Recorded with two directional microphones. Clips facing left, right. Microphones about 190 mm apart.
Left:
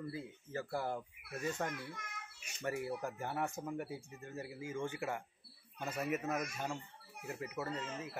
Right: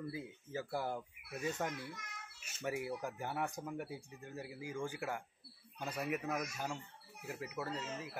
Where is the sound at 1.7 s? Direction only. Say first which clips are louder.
Left 1 dB; 55° left (ahead or behind).